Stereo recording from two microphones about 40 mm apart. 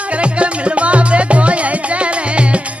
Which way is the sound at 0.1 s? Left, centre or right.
Right.